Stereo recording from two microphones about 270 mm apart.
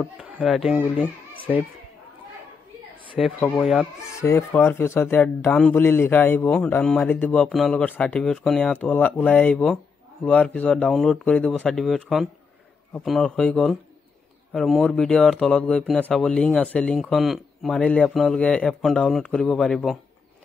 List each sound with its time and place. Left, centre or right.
0.0 s speech: centre
3.2 s speech: centre